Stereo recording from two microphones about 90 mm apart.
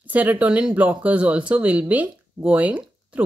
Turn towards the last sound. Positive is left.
turn(degrees=-15)  # may be behind; listen again after turning